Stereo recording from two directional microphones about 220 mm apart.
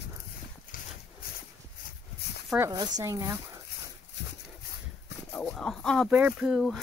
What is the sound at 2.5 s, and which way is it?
Speech, 15° right (ahead or behind).